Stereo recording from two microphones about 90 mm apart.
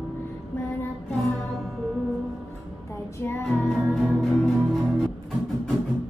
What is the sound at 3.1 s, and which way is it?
Music, 30° left (ahead or behind).